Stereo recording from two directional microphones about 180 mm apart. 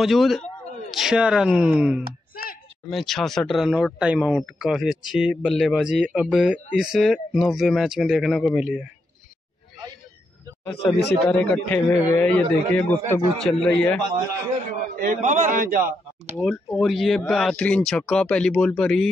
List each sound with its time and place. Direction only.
0.0 s speech: centre (ahead or behind)
10.6 s a man's voice: 15° left (ahead or behind)
14.7 s a man's voice: 45° right (ahead or behind)
16.3 s speech: centre (ahead or behind)